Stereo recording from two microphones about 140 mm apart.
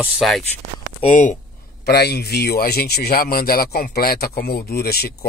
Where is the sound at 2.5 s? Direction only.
90° left.